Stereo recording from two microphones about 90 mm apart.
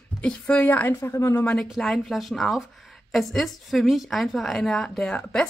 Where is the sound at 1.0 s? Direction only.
30° left (ahead or behind).